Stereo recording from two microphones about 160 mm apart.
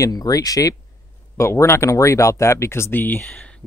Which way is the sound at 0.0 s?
20° left (ahead or behind).